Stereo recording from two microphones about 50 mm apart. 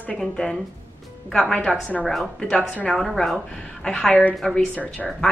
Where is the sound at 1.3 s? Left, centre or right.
Centre.